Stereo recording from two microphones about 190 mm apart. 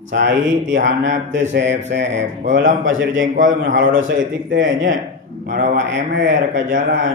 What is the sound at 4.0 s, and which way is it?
Speech, 90° right.